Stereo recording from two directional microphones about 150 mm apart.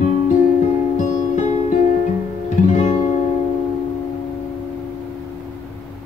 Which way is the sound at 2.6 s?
55° left (ahead or behind).